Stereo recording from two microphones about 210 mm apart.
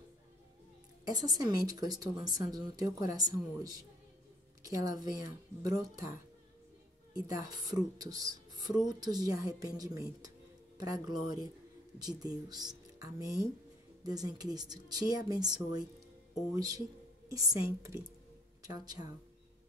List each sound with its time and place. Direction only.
1.0 s speech: 20° right (ahead or behind)
7.3 s speech: 20° right (ahead or behind)